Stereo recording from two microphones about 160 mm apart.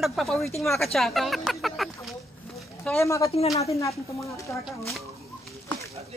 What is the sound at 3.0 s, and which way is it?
Speech, 20° left (ahead or behind).